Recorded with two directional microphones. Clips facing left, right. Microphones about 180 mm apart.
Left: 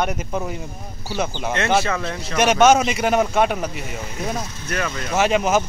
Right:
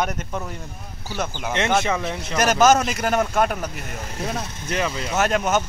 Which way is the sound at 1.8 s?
15° right (ahead or behind).